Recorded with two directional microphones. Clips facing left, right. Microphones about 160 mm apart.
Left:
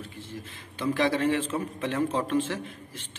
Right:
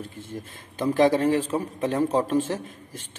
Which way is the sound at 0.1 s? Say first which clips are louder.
Right 3 dB; 50° right (ahead or behind).